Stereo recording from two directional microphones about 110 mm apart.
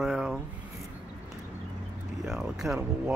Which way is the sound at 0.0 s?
5° right (ahead or behind).